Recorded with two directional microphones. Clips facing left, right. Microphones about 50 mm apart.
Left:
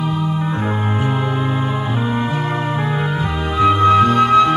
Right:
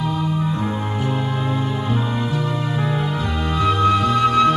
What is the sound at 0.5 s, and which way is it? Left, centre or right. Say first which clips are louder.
Music: left 3 dB; left.